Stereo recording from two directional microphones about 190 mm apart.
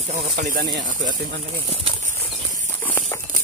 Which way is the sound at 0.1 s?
40° right (ahead or behind).